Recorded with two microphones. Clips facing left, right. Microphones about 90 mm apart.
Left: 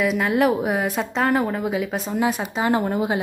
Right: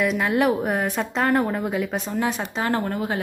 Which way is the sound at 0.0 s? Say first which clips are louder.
Left 1 dB; centre (ahead or behind).